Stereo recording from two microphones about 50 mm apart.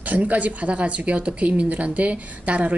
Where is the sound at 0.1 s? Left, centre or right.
Right.